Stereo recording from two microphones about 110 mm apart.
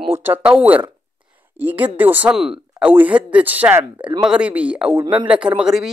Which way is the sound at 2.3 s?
5° right (ahead or behind).